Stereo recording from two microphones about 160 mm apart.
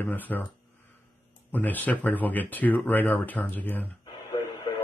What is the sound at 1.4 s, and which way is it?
Speech, 10° left (ahead or behind).